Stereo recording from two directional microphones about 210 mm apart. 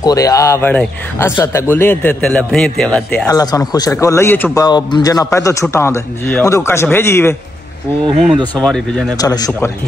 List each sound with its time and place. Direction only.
0.0 s a man's voice: 15° left (ahead or behind)
3.3 s a man's voice: 15° left (ahead or behind)
8.5 s a man's voice: 5° left (ahead or behind)
9.2 s a man's voice: 15° left (ahead or behind)